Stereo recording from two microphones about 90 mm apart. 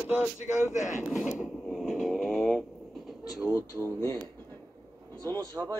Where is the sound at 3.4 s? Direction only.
5° right (ahead or behind).